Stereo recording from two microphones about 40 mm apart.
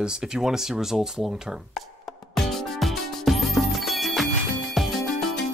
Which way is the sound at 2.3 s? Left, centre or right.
Centre.